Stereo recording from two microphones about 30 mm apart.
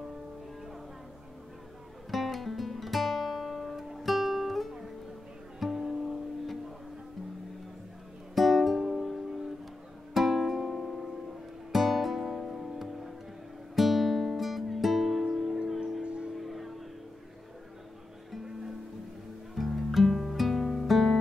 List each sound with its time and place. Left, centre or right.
2.0 s guitar: centre
5.7 s music: centre
8.4 s music: centre
8.7 s music: centre
11.7 s music: centre
15.7 s wind chime: centre
16.0 s a sound: right
16.3 s music: centre
19.5 s music: centre